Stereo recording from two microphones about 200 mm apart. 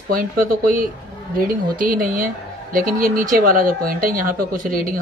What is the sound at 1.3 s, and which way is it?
Speech, 45° right (ahead or behind).